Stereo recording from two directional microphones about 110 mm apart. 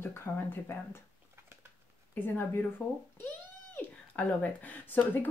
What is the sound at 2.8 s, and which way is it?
Speech, 20° left (ahead or behind).